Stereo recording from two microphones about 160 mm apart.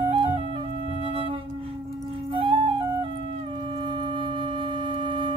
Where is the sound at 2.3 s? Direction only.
35° right (ahead or behind).